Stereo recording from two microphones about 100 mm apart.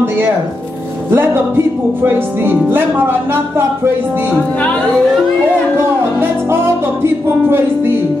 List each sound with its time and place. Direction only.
1.1 s speech: 25° right (ahead or behind)
6.1 s music: 25° right (ahead or behind)
7.4 s speech: 25° right (ahead or behind)